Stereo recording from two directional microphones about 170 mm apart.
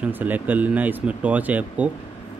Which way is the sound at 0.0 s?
10° right (ahead or behind).